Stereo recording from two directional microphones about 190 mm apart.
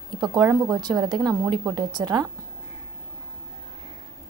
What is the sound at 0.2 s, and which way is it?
A woman's voice, 20° right (ahead or behind).